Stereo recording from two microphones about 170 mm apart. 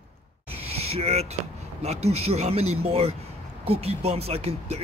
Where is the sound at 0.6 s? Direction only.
35° right (ahead or behind).